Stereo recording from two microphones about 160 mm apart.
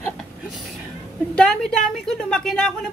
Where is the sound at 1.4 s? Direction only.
5° left (ahead or behind).